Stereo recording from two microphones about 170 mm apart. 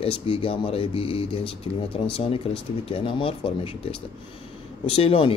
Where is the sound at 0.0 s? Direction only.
35° left (ahead or behind).